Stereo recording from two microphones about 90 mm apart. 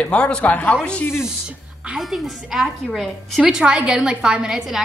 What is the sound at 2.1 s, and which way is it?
A woman's voice, centre (ahead or behind).